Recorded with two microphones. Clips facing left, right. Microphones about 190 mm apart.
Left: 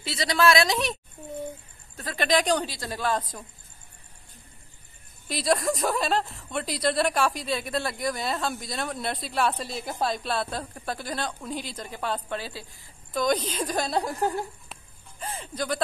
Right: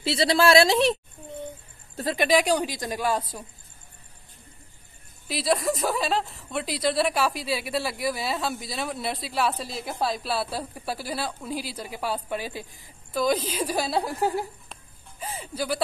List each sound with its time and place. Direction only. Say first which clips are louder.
0.0 s a woman's voice: right 2 dB; 30° right (ahead or behind)
2.1 s speech: right 2 dB; 10° right (ahead or behind)
5.3 s a woman's voice: even; centre (ahead or behind)
13.1 s speech: right 1 dB; 5° right (ahead or behind)